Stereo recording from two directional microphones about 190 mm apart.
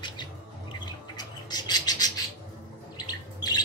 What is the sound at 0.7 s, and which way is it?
Bird, 20° left (ahead or behind).